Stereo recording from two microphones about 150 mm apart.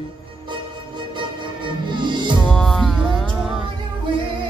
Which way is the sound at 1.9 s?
30° right (ahead or behind).